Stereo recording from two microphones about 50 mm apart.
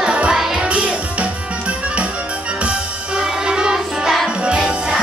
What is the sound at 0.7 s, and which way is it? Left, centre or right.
Music, right.